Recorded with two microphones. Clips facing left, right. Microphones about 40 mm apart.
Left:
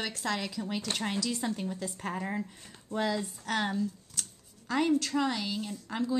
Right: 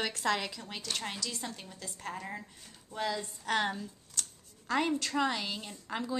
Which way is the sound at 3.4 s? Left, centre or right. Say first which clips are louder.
Right 2 dB; centre.